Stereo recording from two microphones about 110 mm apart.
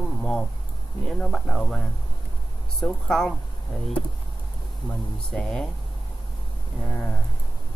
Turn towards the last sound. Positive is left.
turn(degrees=20)  # may be behind; listen again after turning